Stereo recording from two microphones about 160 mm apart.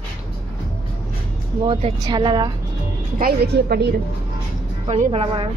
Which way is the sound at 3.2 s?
85° right.